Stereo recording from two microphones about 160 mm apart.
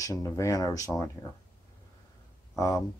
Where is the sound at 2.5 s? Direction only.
20° left (ahead or behind).